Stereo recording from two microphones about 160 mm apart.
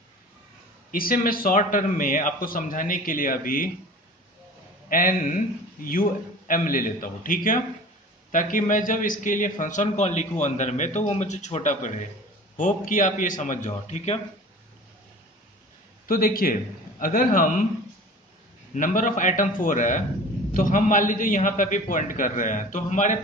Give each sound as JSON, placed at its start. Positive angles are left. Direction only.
{"t": 0.9, "sound": "a man's voice", "side_deg": 60}
{"t": 4.8, "sound": "a man's voice", "side_deg": 60}
{"t": 16.1, "sound": "a man's voice", "side_deg": 65}
{"t": 18.8, "sound": "a man's voice", "side_deg": 55}